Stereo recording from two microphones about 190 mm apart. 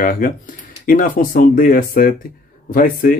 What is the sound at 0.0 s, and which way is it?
Speech, 45° left (ahead or behind).